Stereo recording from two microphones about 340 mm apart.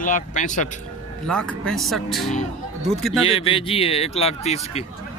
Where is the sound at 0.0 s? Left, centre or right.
Left.